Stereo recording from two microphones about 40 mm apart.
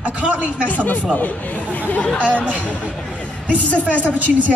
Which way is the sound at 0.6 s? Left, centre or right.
Left.